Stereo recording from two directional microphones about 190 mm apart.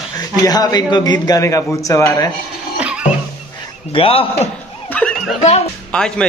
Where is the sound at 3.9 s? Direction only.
30° left (ahead or behind).